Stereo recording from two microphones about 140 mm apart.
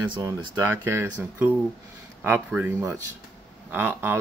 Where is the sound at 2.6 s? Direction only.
15° right (ahead or behind).